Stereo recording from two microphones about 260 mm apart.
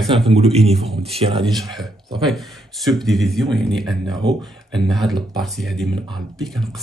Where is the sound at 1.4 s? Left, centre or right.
Centre.